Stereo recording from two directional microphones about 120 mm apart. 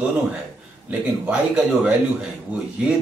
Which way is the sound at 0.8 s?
10° right (ahead or behind).